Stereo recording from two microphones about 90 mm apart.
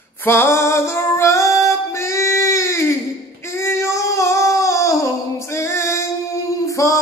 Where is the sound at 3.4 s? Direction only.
30° left (ahead or behind).